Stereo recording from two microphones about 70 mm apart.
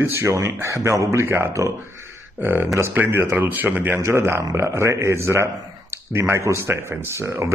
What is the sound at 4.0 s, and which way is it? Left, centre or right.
A man's voice, right.